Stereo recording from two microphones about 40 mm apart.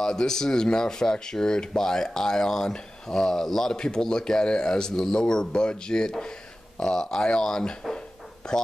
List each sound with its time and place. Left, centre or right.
0.0 s speech: centre